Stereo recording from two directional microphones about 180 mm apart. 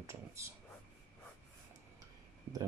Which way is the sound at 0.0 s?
15° right (ahead or behind).